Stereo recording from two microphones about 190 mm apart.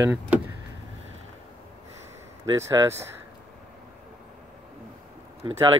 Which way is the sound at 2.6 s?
15° right (ahead or behind).